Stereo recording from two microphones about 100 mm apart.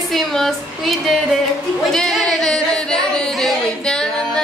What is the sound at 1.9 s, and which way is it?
Singing, 5° left (ahead or behind).